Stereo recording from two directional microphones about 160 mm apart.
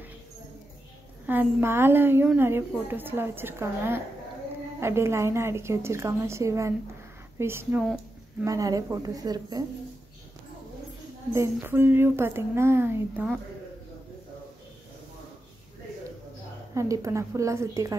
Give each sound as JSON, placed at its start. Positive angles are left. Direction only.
{"t": 1.2, "sound": "a woman's voice", "side_deg": -10}
{"t": 7.8, "sound": "a sound", "side_deg": -5}
{"t": 8.5, "sound": "a woman's voice", "side_deg": -20}
{"t": 11.3, "sound": "a woman's voice", "side_deg": -15}
{"t": 16.7, "sound": "a woman's voice", "side_deg": -20}